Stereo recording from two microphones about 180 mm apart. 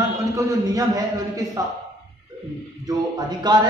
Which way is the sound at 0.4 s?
20° right (ahead or behind).